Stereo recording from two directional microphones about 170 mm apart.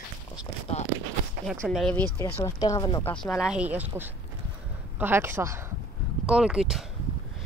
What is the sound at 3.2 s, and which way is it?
Speech, centre (ahead or behind).